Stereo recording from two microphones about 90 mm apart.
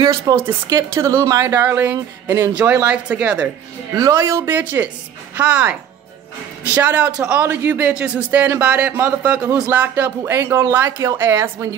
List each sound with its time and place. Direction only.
0.0 s a woman's voice: 40° right (ahead or behind)
1.5 s speech: 25° right (ahead or behind)
4.1 s a woman's voice: 35° right (ahead or behind)
4.5 s speech: 20° right (ahead or behind)
7.9 s speech: 10° right (ahead or behind)
10.2 s speech: 30° right (ahead or behind)